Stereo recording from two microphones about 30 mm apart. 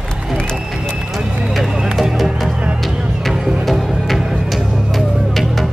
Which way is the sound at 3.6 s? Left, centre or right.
Centre.